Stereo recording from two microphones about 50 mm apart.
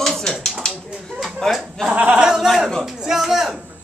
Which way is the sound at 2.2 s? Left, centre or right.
Centre.